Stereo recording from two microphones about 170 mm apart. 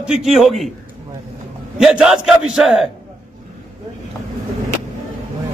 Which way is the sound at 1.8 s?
5° right (ahead or behind).